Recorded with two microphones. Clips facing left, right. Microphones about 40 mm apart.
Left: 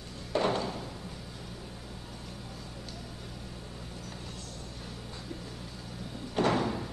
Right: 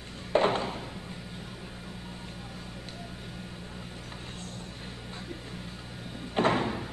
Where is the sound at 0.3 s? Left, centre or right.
Right.